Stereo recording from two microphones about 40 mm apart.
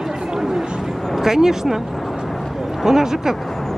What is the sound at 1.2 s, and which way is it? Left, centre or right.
Speech, centre.